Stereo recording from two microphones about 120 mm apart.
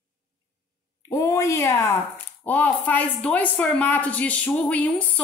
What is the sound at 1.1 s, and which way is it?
A woman's voice, 25° left (ahead or behind).